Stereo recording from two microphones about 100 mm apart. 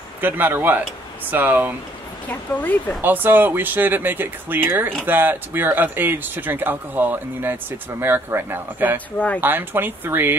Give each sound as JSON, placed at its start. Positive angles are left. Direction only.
{"t": 0.2, "sound": "speech", "side_deg": -20}
{"t": 2.2, "sound": "speech", "side_deg": 15}
{"t": 3.0, "sound": "speech", "side_deg": -20}